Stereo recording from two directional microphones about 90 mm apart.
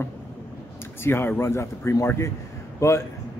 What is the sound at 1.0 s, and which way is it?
A man's voice, 25° left (ahead or behind).